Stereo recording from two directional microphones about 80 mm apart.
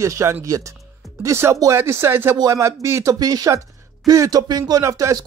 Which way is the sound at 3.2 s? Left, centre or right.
Right.